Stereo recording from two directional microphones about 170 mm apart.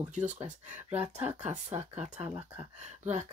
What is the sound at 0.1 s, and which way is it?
Speech, 45° right (ahead or behind).